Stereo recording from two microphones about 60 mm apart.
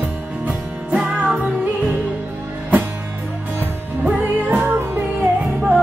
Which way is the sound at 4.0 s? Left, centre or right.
Right.